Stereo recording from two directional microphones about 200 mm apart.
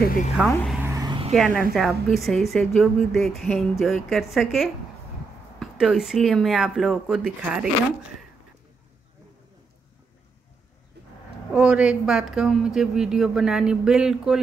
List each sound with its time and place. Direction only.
0.0 s speech: 45° left (ahead or behind)
0.8 s a sound: 20° right (ahead or behind)
1.3 s a woman's voice: centre (ahead or behind)
11.0 s cattle: 55° right (ahead or behind)
11.5 s a woman's voice: 5° right (ahead or behind)